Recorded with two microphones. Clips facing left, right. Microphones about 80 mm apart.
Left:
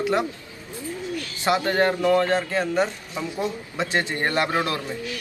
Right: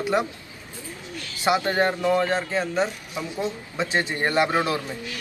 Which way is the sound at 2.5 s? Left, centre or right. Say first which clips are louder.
Left 1 dB; centre.